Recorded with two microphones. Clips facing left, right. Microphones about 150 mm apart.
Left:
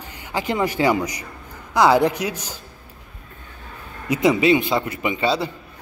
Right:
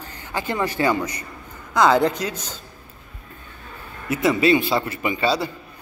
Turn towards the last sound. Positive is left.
turn(degrees=20)  # may be behind; listen again after turning